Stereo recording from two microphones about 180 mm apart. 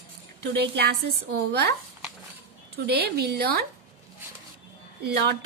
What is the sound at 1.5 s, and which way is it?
Speech, 65° right (ahead or behind).